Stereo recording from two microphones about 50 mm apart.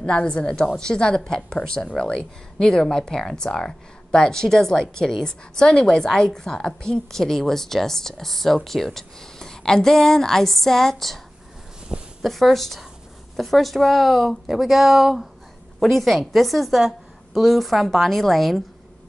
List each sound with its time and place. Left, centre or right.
0.0 s speech: centre
12.2 s a woman's voice: centre